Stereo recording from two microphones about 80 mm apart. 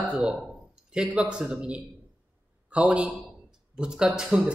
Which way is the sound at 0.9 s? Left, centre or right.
Centre.